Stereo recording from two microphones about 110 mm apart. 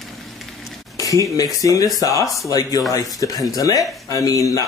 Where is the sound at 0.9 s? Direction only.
30° left (ahead or behind).